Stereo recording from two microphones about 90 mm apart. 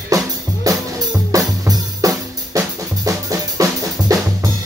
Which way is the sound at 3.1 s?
40° right (ahead or behind).